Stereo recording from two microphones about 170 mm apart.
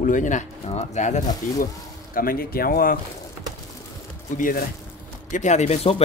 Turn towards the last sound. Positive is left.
turn(degrees=40)  # may be behind; listen again after turning